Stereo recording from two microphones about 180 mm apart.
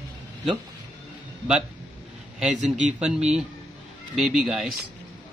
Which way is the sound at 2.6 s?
40° right (ahead or behind).